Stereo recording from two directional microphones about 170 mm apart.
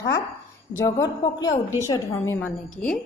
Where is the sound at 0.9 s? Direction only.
15° left (ahead or behind).